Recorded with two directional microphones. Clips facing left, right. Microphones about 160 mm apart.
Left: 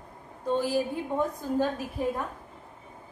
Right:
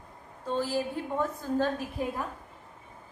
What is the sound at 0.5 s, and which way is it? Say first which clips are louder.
A woman's voice: left 3 dB; 15° left (ahead or behind).